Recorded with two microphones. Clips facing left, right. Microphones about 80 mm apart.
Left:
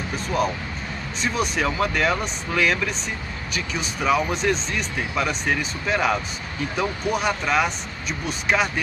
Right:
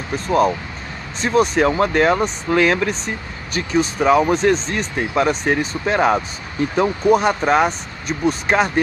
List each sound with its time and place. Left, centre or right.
0.1 s speech: right